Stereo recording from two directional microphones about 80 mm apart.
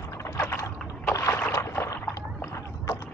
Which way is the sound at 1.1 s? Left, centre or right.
Left.